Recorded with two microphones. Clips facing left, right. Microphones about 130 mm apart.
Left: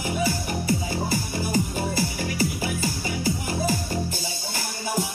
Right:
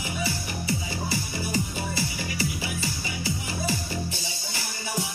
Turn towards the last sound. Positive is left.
turn(degrees=45)  # may be behind; listen again after turning